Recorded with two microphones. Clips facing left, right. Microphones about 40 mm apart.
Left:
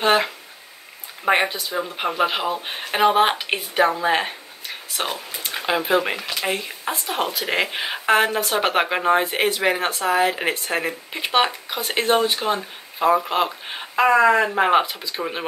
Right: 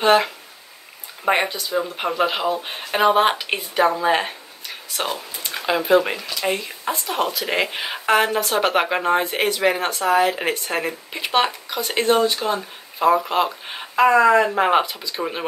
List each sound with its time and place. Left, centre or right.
0.0 s a sound: centre
1.2 s speech: centre
5.0 s speech: centre
12.5 s speech: centre